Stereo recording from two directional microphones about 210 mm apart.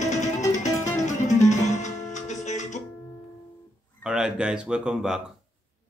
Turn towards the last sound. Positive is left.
turn(degrees=-5)  # may be behind; listen again after turning